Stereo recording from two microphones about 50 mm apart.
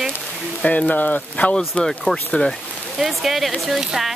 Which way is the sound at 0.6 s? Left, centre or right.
Left.